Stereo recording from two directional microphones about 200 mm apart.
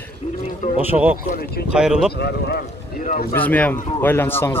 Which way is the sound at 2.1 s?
55° left (ahead or behind).